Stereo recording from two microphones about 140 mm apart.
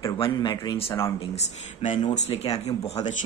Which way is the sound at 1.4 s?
50° left (ahead or behind).